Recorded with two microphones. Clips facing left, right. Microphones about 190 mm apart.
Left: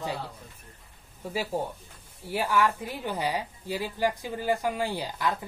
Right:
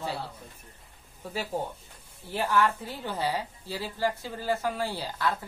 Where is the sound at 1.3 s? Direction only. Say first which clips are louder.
Left 2 dB; 10° left (ahead or behind).